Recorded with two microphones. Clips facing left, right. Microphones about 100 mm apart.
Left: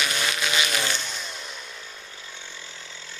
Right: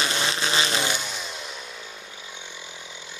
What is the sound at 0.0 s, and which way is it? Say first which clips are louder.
Applause: right 1 dB; 30° right (ahead or behind).